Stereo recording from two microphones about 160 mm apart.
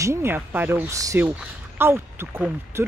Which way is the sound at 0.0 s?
15° right (ahead or behind).